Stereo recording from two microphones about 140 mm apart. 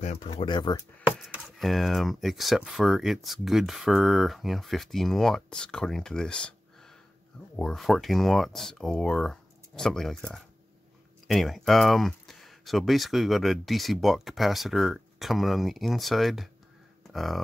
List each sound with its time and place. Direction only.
0.0 s speech: 50° left (ahead or behind)
0.5 s speech: 30° left (ahead or behind)
1.2 s speech: 5° right (ahead or behind)